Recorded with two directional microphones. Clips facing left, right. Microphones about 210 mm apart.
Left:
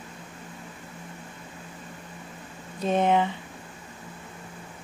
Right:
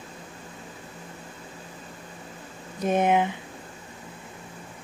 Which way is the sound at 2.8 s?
15° right (ahead or behind).